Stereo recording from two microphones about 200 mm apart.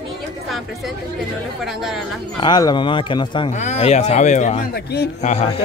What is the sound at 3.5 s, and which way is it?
Speech, 35° left (ahead or behind).